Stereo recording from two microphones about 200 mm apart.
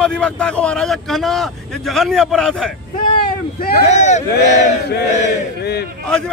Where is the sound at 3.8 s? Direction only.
35° left (ahead or behind).